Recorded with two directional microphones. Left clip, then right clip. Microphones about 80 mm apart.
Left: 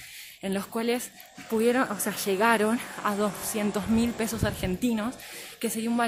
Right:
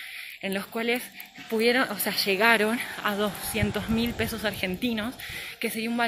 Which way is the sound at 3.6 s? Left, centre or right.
Left.